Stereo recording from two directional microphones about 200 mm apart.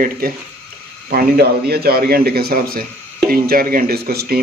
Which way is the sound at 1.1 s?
50° right (ahead or behind).